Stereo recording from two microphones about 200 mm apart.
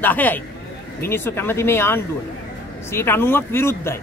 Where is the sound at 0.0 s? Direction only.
10° left (ahead or behind).